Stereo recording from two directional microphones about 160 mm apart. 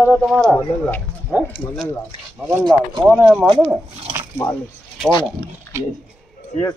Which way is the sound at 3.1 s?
5° right (ahead or behind).